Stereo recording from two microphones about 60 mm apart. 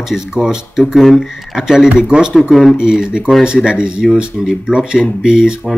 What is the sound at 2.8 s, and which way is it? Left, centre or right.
Speech, centre.